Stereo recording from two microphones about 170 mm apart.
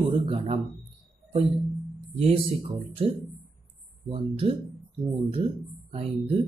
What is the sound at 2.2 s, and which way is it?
Speech, 35° right (ahead or behind).